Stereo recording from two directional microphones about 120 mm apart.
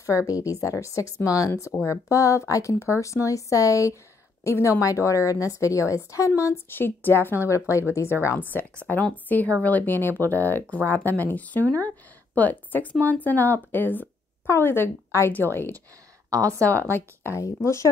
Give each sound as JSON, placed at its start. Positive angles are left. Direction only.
{"t": 0.3, "sound": "a woman's voice", "side_deg": 25}
{"t": 16.3, "sound": "a woman's voice", "side_deg": -25}
{"t": 16.9, "sound": "a woman's voice", "side_deg": 20}